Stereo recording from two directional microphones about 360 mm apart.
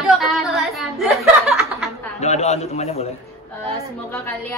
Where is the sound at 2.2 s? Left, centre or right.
Centre.